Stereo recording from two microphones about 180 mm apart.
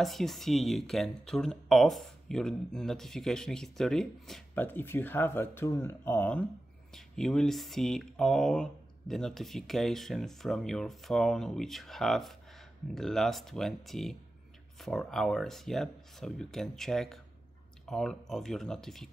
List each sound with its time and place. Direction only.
0.0 s speech: centre (ahead or behind)